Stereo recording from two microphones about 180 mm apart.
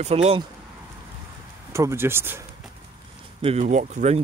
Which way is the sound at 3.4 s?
35° right (ahead or behind).